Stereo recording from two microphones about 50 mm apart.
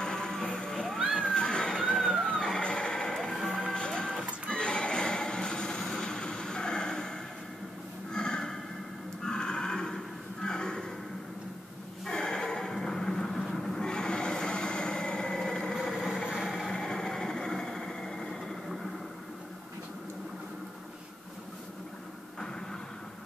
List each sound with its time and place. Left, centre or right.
0.0 s music: centre
0.9 s music: centre
1.2 s water: centre
2.0 s a sound: centre
2.2 s music: centre
3.3 s music: centre
3.6 s music: centre
8.1 s a sound: centre
9.2 s neigh: centre
12.1 s a sound: centre
15.9 s a sound: centre
16.6 s vehicle: centre